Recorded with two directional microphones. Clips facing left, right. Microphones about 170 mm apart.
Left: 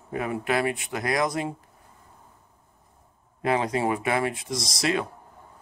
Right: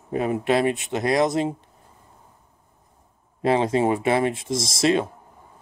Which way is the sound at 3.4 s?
25° right (ahead or behind).